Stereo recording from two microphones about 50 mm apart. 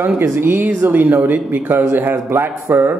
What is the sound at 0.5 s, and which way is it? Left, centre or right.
A man's voice, right.